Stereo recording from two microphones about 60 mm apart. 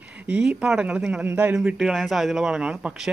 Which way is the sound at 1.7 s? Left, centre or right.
Centre.